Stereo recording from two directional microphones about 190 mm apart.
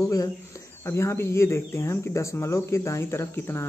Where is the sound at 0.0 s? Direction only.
15° left (ahead or behind).